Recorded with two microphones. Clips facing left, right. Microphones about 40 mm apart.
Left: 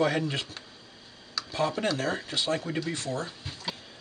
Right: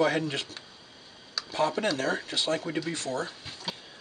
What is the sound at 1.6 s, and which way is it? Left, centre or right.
Speech, centre.